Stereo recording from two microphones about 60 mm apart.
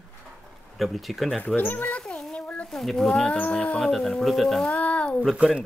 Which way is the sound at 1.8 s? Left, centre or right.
Centre.